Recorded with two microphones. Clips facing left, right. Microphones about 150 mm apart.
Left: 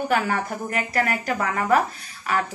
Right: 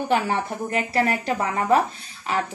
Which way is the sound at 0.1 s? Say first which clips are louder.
Right 3 dB; 25° right (ahead or behind).